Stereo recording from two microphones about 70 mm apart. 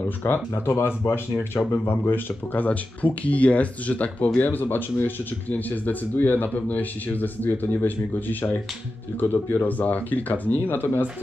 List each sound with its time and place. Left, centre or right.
0.0 s speech: left